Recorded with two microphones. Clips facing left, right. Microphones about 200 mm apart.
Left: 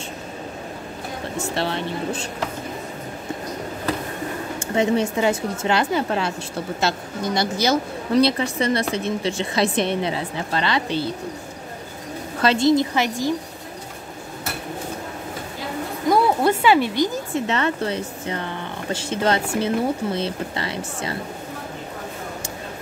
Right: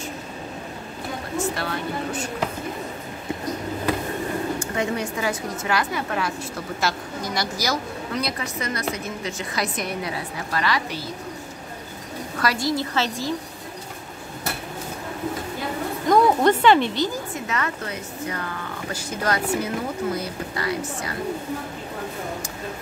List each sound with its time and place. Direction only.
1.5 s a woman's voice: 25° left (ahead or behind)
4.6 s a woman's voice: 25° left (ahead or behind)
12.4 s a woman's voice: 25° left (ahead or behind)
16.1 s a sound: 10° left (ahead or behind)
17.3 s a woman's voice: 30° left (ahead or behind)